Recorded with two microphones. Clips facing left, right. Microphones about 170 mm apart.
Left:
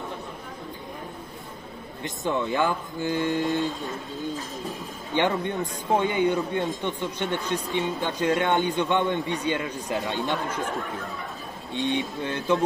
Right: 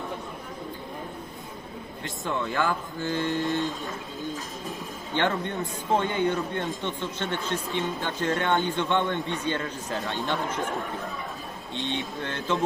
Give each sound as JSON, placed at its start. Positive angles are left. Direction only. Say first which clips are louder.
{"t": 2.0, "sound": "a man's voice", "louder": "left 4 dB", "side_deg": 20}
{"t": 5.1, "sound": "a man's voice", "louder": "left 2 dB", "side_deg": 15}
{"t": 11.7, "sound": "a man's voice", "louder": "left 5 dB", "side_deg": 15}